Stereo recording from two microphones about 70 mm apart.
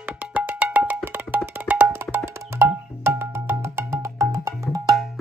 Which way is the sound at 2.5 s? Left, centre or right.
Right.